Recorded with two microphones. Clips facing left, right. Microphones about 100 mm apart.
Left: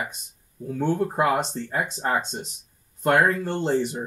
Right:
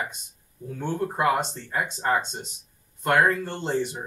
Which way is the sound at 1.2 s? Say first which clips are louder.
Right 2 dB; 45° left (ahead or behind).